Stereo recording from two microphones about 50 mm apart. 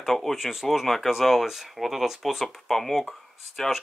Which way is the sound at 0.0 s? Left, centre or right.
Centre.